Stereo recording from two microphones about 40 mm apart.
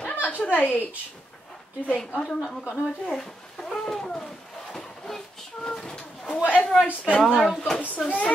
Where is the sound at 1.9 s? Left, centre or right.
Left.